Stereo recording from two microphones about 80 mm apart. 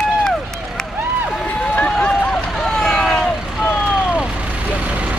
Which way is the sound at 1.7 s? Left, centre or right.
Centre.